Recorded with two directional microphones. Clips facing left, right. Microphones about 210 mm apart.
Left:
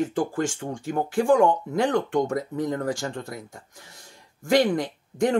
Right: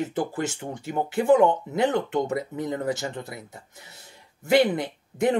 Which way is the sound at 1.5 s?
20° right (ahead or behind).